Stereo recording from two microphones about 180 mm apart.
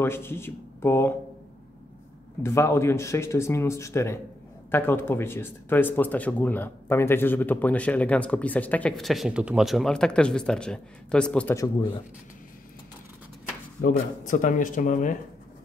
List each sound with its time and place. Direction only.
0.0 s speech: 15° left (ahead or behind)
2.4 s speech: 15° left (ahead or behind)
11.5 s speech: 20° left (ahead or behind)
13.7 s speech: 45° left (ahead or behind)